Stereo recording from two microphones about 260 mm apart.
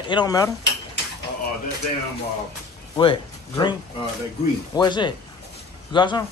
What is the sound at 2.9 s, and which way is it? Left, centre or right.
Speech, centre.